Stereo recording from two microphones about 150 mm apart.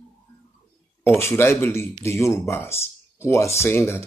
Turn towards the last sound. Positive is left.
turn(degrees=15)  # may be behind; listen again after turning